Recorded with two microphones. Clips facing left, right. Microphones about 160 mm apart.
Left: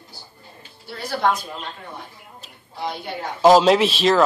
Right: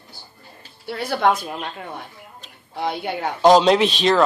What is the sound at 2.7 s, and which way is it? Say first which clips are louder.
Speech: right 4 dB; 60° right (ahead or behind).